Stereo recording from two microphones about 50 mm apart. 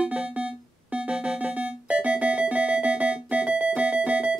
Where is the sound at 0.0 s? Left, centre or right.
Right.